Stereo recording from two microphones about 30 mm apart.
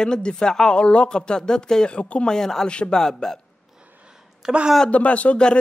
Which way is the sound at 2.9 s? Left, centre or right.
Centre.